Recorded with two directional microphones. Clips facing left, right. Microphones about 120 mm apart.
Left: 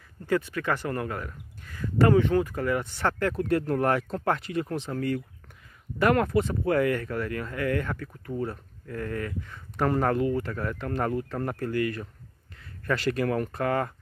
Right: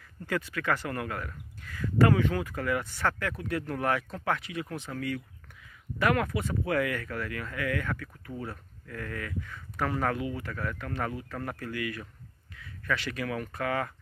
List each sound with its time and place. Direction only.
0.3 s speech: 20° left (ahead or behind); by 10.5 s 40° left (ahead or behind)
10.5 s speech: 30° left (ahead or behind)
10.9 s speech: 40° left (ahead or behind)
11.2 s speech: 30° left (ahead or behind)